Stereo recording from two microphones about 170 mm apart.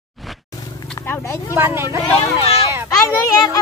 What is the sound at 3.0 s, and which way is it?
Children playing, 20° left (ahead or behind).